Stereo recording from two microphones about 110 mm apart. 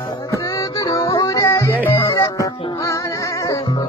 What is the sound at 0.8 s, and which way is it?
Music, 30° left (ahead or behind).